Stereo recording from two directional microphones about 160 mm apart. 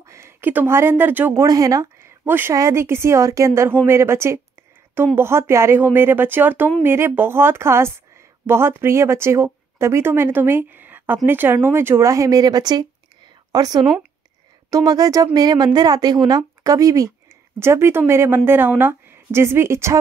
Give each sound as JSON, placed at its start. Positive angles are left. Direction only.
{"t": 0.0, "sound": "speech", "side_deg": -15}